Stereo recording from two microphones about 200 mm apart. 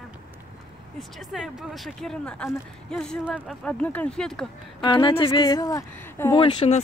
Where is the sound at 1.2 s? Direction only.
Centre (ahead or behind).